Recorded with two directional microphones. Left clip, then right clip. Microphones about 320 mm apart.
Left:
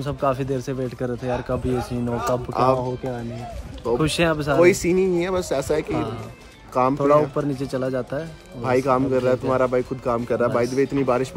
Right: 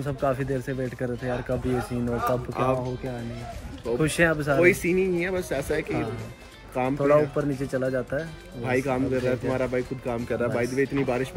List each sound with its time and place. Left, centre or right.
0.0 s speech: centre
4.0 s speech: centre